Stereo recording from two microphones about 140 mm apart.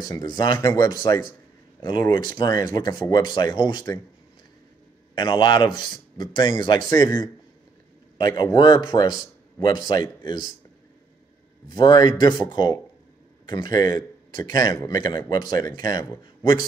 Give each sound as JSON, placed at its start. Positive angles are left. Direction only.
{"t": 0.0, "sound": "speech", "side_deg": 25}
{"t": 5.1, "sound": "speech", "side_deg": 30}
{"t": 11.7, "sound": "a man's voice", "side_deg": 30}